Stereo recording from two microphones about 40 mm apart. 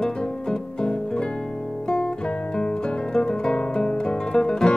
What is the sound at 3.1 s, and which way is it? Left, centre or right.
Music, left.